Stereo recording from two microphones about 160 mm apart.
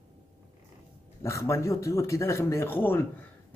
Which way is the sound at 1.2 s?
20° left (ahead or behind).